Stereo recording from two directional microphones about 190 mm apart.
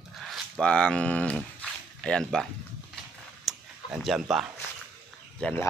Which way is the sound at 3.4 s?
Centre (ahead or behind).